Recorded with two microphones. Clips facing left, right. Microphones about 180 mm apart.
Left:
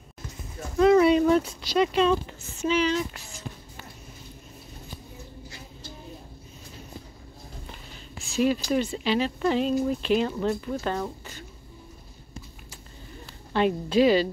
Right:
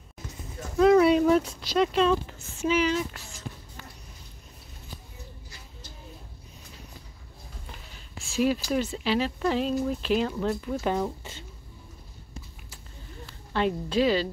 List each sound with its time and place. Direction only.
0.7 s speech: centre (ahead or behind)
3.1 s music: 15° left (ahead or behind)
8.3 s a sound: 5° right (ahead or behind)
8.6 s speech: 5° right (ahead or behind)
13.5 s a woman's voice: 10° left (ahead or behind)